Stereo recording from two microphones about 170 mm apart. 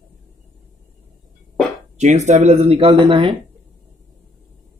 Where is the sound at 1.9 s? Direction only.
40° right (ahead or behind).